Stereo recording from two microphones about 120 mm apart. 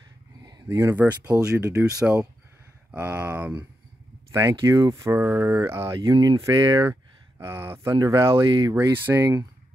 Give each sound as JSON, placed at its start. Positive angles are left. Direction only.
{"t": 0.4, "sound": "a sound", "side_deg": -35}
{"t": 0.7, "sound": "speech", "side_deg": -30}
{"t": 0.9, "sound": "speech", "side_deg": -10}
{"t": 1.6, "sound": "speech", "side_deg": -25}
{"t": 1.9, "sound": "speech", "side_deg": -10}
{"t": 4.3, "sound": "speech", "side_deg": -25}
{"t": 5.9, "sound": "speech", "side_deg": -40}
{"t": 6.9, "sound": "speech", "side_deg": -20}
{"t": 7.9, "sound": "speech", "side_deg": -35}
{"t": 8.9, "sound": "speech", "side_deg": -15}
{"t": 9.2, "sound": "speech", "side_deg": -30}